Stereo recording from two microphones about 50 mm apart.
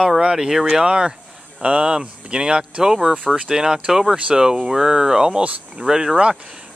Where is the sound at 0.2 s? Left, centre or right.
Centre.